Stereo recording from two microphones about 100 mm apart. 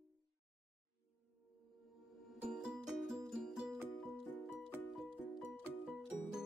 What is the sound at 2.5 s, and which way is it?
Music, 5° right (ahead or behind).